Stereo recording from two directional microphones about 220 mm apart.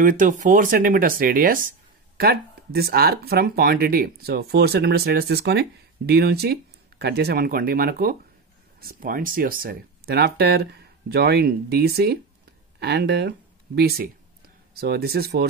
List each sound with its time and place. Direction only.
0.0 s speech: 35° right (ahead or behind)